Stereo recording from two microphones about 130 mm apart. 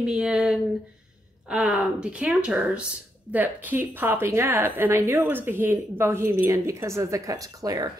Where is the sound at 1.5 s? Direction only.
5° right (ahead or behind); by 7.9 s 30° right (ahead or behind).